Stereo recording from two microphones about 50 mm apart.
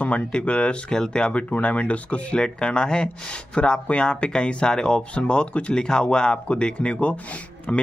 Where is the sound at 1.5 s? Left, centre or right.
Left.